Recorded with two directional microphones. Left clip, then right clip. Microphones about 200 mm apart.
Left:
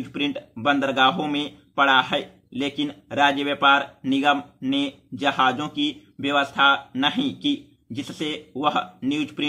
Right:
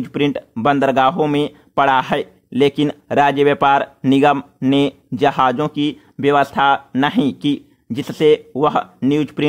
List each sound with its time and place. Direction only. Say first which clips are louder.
0.0 s speech: right 8 dB; 40° right (ahead or behind)